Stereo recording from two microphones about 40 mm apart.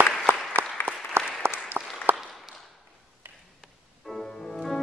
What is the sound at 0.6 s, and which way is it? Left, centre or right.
Applause, right.